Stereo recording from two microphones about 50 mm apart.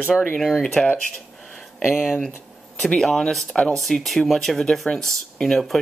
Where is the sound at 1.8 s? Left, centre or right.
Centre.